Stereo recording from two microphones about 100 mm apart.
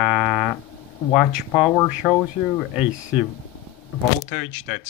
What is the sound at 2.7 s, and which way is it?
Speech, 15° right (ahead or behind).